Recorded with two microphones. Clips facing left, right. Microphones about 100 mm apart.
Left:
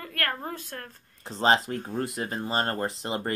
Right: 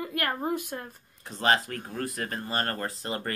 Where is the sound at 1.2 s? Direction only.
25° left (ahead or behind).